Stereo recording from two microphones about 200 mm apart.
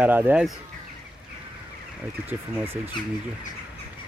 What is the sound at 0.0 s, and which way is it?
Speech, 5° right (ahead or behind).